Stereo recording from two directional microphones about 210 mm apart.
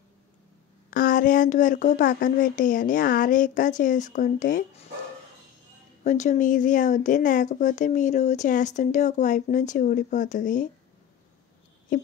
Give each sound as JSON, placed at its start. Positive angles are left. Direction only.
{"t": 0.8, "sound": "speech", "side_deg": 40}
{"t": 6.0, "sound": "speech", "side_deg": 35}
{"t": 11.9, "sound": "speech", "side_deg": 40}